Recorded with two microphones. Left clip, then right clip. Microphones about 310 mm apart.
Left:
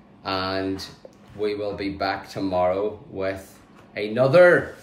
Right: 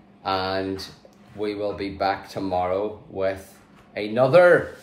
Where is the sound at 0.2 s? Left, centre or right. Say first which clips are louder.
Right 1 dB; centre.